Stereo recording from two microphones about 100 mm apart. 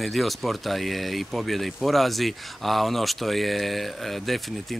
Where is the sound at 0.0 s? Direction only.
Centre (ahead or behind).